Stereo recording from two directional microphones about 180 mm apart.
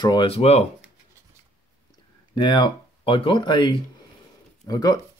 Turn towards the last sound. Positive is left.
turn(degrees=20)  # may be behind; listen again after turning